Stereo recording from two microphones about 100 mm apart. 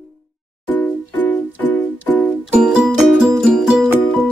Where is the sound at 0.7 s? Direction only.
15° left (ahead or behind).